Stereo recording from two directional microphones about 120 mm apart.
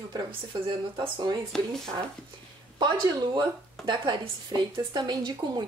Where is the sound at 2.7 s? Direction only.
40° right (ahead or behind).